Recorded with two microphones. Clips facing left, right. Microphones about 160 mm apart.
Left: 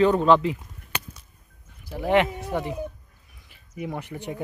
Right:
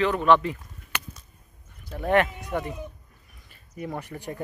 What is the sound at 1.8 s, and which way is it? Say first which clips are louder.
Speech: left 2 dB; 5° left (ahead or behind).